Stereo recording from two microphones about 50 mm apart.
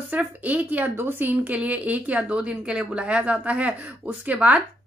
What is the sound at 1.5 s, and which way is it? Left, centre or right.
A woman's voice, right.